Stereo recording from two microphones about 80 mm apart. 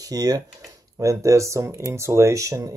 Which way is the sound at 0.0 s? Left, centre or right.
Right.